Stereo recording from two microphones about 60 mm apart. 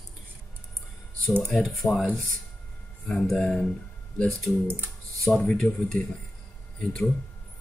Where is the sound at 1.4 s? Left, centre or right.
Centre.